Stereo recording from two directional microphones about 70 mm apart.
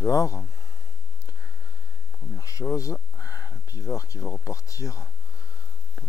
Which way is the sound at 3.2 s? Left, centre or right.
Left.